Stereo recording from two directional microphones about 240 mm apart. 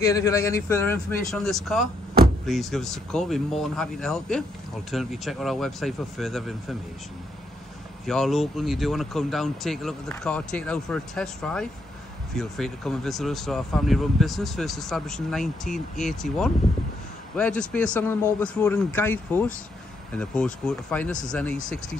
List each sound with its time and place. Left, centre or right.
0.0 s speech: centre
8.0 s speech: centre